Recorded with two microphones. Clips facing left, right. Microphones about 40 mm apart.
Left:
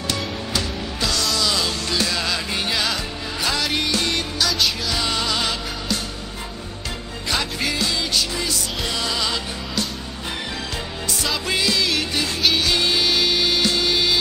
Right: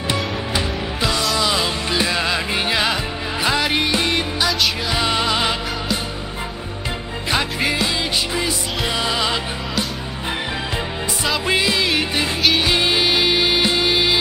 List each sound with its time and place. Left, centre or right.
0.1 s music: right
7.2 s music: right
11.2 s music: right